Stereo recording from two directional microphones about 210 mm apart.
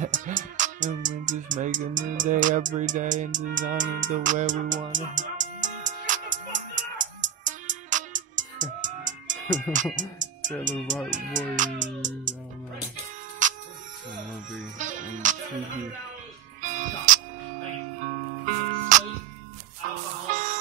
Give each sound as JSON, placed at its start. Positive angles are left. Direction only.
{"t": 0.0, "sound": "music", "side_deg": -35}
{"t": 1.3, "sound": "speech", "side_deg": -35}
{"t": 4.9, "sound": "music", "side_deg": -35}
{"t": 10.6, "sound": "speech", "side_deg": -35}
{"t": 13.4, "sound": "music", "side_deg": -35}
{"t": 14.8, "sound": "speech", "side_deg": -35}
{"t": 16.6, "sound": "music", "side_deg": -35}
{"t": 18.4, "sound": "music", "side_deg": -35}